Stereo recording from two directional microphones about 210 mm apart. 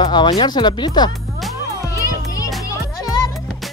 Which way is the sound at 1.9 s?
15° left (ahead or behind).